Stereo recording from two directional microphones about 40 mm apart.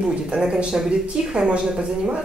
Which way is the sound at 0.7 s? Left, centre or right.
Centre.